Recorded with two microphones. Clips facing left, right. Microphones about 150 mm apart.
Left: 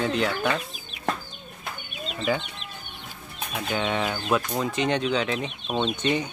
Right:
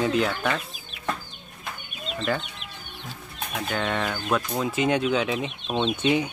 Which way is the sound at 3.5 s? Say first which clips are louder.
Left 1 dB; 5° left (ahead or behind).